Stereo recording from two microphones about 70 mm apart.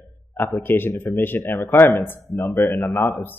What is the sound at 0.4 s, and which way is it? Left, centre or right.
Speech, left.